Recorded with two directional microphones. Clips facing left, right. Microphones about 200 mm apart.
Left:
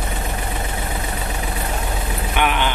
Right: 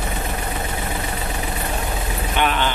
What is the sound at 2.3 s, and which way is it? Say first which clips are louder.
Vehicle: even; 15° left (ahead or behind).